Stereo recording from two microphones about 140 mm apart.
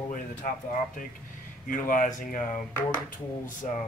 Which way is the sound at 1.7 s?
70° left (ahead or behind).